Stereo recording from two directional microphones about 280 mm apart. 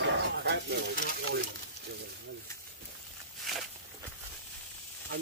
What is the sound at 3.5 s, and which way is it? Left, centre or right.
Walk, centre.